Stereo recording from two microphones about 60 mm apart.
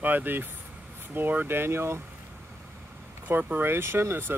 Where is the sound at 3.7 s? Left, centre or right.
Right.